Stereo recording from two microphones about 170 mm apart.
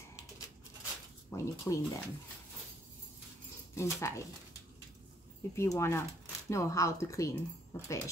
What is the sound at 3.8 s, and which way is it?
Speech, 15° left (ahead or behind).